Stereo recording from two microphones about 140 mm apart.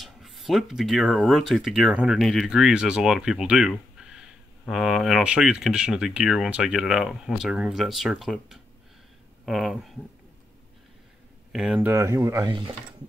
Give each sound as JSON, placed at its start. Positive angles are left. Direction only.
{"t": 0.0, "sound": "speech", "side_deg": 0}
{"t": 11.5, "sound": "speech", "side_deg": -10}
{"t": 11.9, "sound": "speech", "side_deg": -20}